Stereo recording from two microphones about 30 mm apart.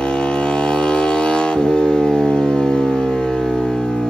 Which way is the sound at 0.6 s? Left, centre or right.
Left.